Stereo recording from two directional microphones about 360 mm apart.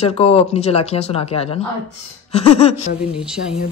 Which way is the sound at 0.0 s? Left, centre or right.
Centre.